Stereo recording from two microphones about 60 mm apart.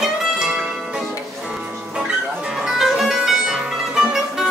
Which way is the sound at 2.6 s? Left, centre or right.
Centre.